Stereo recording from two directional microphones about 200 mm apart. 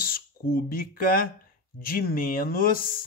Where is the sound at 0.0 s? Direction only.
50° left (ahead or behind).